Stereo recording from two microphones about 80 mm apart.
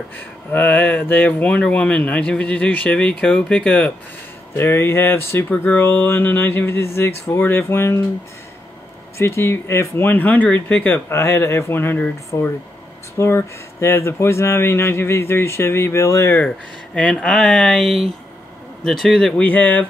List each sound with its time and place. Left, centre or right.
0.5 s speech: left
4.6 s speech: left
5.5 s speech: left
9.2 s speech: left
11.1 s speech: left
16.4 s speech: centre
19.4 s speech: left